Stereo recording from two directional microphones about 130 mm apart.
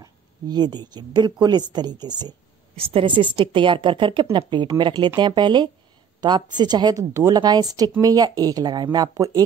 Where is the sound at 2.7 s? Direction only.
45° right (ahead or behind).